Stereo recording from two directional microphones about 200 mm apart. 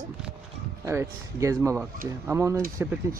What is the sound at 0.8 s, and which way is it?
Speech, 15° right (ahead or behind).